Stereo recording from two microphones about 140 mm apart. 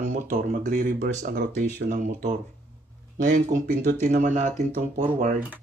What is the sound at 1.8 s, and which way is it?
Speech, 65° right (ahead or behind).